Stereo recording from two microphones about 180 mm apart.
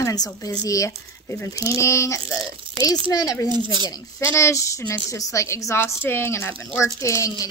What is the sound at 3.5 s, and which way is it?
Speech, 25° right (ahead or behind).